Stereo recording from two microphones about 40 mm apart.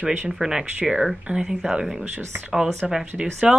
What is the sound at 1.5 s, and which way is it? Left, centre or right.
A woman's voice, centre.